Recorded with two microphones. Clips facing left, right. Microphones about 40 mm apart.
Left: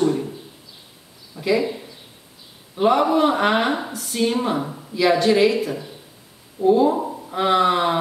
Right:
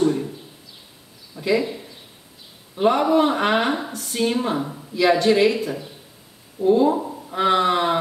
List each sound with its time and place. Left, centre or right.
0.0 s a sound: centre
1.3 s speech: centre
2.7 s a man's voice: centre